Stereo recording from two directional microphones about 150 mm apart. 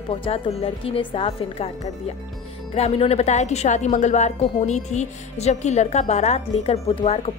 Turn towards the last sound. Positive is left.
turn(degrees=40)  # may be behind; listen again after turning